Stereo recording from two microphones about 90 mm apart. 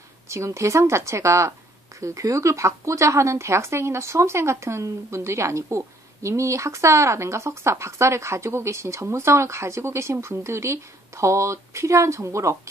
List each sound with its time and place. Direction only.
0.3 s speech: 35° right (ahead or behind)